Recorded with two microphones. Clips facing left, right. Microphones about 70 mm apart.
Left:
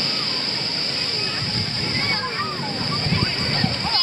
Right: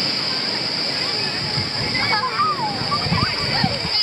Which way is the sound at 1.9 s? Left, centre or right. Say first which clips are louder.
Right 6 dB; right.